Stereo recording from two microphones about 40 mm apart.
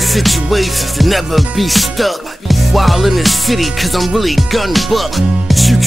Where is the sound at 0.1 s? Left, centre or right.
Centre.